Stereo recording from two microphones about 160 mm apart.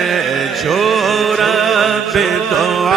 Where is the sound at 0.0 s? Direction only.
Centre (ahead or behind).